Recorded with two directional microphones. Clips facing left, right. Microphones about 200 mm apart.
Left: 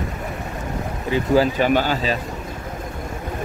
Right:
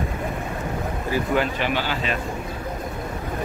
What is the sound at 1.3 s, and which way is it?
Speech, 40° left (ahead or behind).